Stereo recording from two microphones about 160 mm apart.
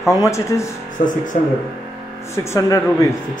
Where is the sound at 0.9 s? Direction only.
55° left (ahead or behind).